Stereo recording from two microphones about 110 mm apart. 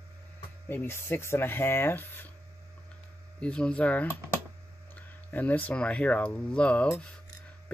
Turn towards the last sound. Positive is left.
turn(degrees=10)  # may be behind; listen again after turning